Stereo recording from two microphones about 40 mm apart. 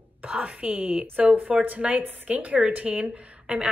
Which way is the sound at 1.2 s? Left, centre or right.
Right.